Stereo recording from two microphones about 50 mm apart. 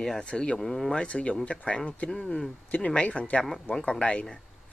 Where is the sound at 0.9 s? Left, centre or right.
Left.